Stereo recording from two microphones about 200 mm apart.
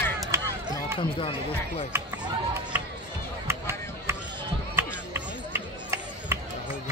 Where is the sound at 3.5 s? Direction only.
15° right (ahead or behind).